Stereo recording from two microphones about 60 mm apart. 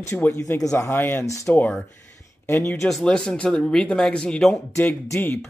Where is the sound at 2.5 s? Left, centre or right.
Left.